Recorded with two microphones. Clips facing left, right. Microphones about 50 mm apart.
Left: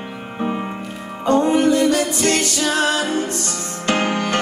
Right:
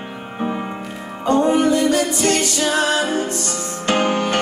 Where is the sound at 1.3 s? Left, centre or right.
Right.